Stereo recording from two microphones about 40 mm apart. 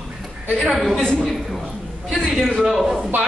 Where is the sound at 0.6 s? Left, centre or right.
Centre.